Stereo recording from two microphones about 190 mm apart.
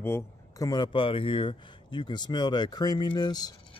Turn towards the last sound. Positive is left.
turn(degrees=20)  # may be behind; listen again after turning